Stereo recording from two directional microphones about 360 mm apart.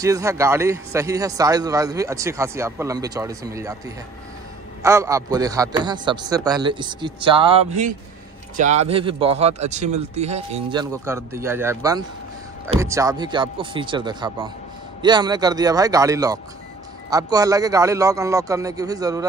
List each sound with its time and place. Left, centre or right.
0.0 s speech: centre